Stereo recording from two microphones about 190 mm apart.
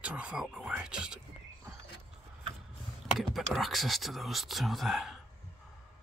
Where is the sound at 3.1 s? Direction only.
Centre (ahead or behind).